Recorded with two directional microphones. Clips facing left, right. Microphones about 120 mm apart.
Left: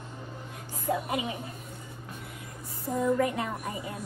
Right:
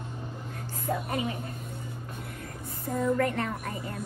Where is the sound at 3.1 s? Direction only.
10° left (ahead or behind).